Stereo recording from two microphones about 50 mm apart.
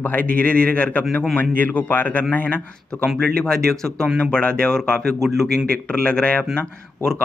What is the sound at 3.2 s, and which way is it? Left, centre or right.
A man's voice, centre.